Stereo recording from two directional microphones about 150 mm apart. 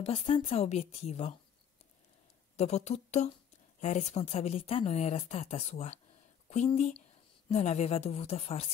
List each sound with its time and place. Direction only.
0.0 s speech: 40° left (ahead or behind)
2.5 s speech: 50° left (ahead or behind)